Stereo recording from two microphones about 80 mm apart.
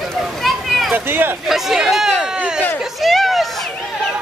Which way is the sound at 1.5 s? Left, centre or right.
Centre.